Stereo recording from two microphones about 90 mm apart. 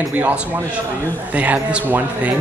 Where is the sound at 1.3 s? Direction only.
15° right (ahead or behind).